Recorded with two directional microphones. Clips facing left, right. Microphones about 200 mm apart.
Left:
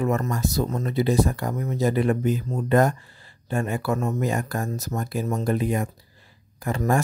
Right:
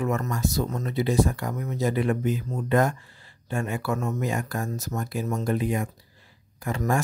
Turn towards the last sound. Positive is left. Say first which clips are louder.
# left 3 dB
turn(degrees=40)  # may be behind; listen again after turning